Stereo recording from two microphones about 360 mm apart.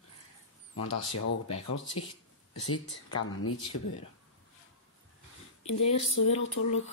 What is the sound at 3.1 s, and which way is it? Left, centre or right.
Speech, left.